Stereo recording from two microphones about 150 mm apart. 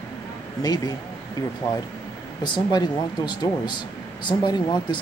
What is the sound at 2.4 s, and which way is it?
Speech, 30° left (ahead or behind).